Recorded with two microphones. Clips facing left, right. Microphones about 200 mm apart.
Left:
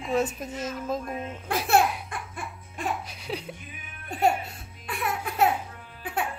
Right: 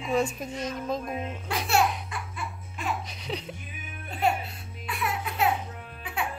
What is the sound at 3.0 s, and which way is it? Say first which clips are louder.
Laughter: left 1 dB; 5° left (ahead or behind).